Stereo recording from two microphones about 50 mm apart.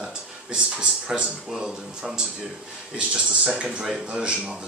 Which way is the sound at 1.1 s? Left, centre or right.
Centre.